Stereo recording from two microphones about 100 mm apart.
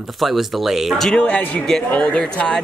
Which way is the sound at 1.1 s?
15° left (ahead or behind).